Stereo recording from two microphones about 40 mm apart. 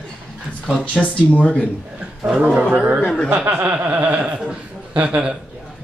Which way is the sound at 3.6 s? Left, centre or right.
Right.